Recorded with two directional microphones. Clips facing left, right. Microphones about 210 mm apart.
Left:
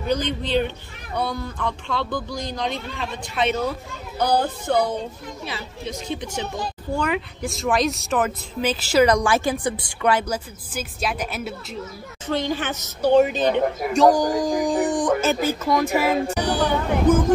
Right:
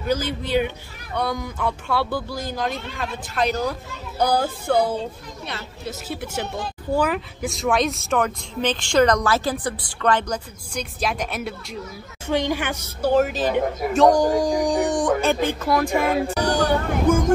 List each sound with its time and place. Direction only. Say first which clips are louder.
0.1 s a woman's voice: even; 5° right (ahead or behind)
12.3 s a woman's voice: right 1 dB; 15° right (ahead or behind); by 16.3 s 5° left (ahead or behind)
16.4 s a sound: right 3 dB; 45° right (ahead or behind)
17.1 s speech: left 1 dB; 10° right (ahead or behind)